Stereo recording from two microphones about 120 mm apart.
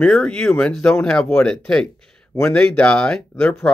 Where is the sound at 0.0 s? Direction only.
10° left (ahead or behind).